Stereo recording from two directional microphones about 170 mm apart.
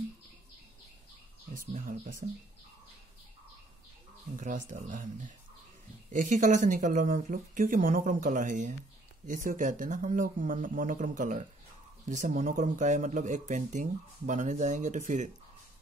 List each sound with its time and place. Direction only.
1.5 s speech: 50° right (ahead or behind)
4.4 s speech: 50° right (ahead or behind)